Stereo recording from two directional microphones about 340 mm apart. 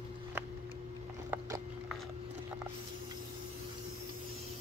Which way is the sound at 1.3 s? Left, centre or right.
Centre.